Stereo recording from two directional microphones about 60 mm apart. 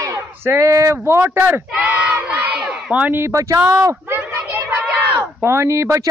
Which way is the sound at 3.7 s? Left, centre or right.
Right.